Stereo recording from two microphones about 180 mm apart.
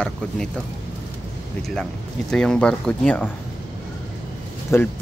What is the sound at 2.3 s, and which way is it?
Speech, 5° left (ahead or behind).